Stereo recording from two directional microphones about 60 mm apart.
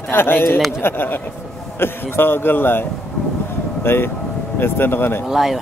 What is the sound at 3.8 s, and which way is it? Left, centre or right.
Speech, left.